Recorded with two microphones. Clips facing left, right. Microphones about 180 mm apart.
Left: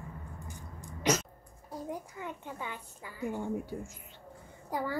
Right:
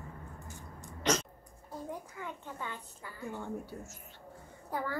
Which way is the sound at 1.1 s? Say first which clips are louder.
Left 2 dB; 10° left (ahead or behind).